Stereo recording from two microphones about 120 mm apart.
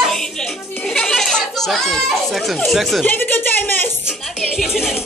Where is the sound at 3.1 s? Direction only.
15° left (ahead or behind).